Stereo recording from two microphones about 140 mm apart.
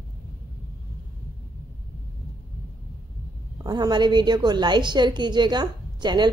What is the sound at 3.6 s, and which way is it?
A woman's voice, 30° right (ahead or behind).